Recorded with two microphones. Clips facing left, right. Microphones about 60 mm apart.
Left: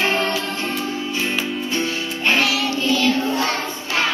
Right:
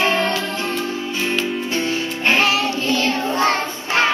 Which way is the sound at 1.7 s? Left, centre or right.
Right.